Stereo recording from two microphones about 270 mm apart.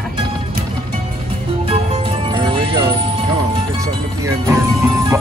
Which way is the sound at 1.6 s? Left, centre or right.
Right.